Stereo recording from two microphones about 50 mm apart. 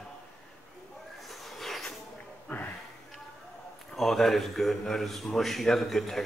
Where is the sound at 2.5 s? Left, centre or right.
Left.